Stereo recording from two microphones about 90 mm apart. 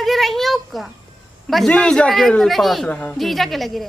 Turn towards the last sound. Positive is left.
turn(degrees=0)  # may be behind; listen again after turning